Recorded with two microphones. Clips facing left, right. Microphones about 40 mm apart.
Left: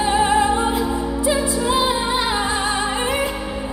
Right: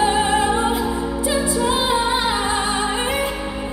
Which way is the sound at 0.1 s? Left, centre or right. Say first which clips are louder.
Left 1 dB; right.